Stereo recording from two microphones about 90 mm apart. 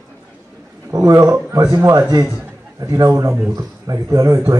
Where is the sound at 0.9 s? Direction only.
35° right (ahead or behind).